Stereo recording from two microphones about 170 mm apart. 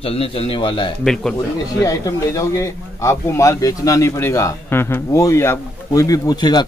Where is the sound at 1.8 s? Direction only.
20° left (ahead or behind).